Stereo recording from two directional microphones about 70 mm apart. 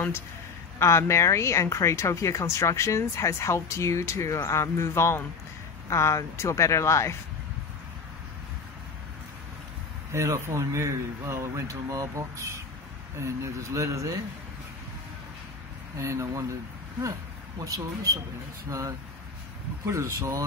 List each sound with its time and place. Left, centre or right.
0.7 s speech: left
10.1 s speech: right
16.0 s speech: right
17.6 s speech: right